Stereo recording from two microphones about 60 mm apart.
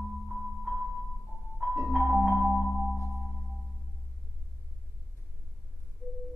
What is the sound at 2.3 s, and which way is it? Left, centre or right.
Marimba, right.